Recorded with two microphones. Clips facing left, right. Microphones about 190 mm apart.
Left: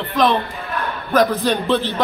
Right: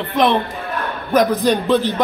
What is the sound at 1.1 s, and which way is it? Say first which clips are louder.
Speech: right 2 dB; 15° right (ahead or behind).